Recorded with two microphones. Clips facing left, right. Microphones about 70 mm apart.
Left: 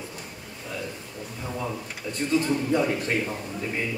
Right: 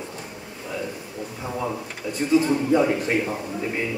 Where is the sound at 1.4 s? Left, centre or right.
Centre.